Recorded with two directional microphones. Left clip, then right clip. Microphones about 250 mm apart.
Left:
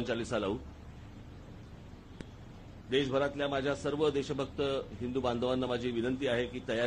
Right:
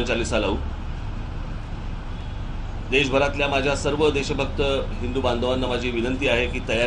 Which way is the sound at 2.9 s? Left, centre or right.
Left.